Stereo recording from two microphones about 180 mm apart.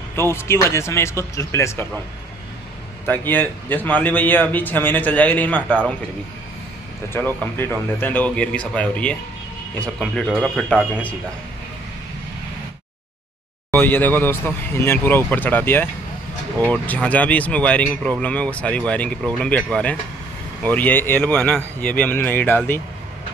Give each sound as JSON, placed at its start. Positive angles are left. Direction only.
{"t": 0.3, "sound": "a man's voice", "side_deg": 15}
{"t": 3.1, "sound": "a man's voice", "side_deg": 10}
{"t": 7.1, "sound": "a man's voice", "side_deg": 10}
{"t": 13.7, "sound": "a man's voice", "side_deg": 10}